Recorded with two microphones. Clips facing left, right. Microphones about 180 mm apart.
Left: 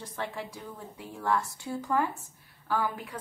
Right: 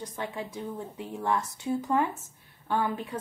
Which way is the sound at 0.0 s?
20° right (ahead or behind).